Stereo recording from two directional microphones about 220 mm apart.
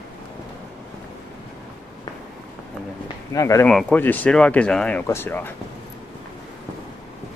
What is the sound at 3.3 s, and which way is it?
Speech, 15° left (ahead or behind).